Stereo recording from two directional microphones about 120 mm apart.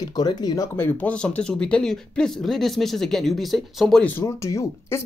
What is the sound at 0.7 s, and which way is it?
Speech, 15° left (ahead or behind).